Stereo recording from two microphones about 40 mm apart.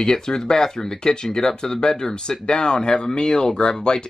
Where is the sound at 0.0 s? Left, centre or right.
Centre.